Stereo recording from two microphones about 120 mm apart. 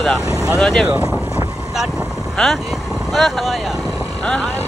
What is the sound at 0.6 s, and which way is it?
Speech, centre (ahead or behind).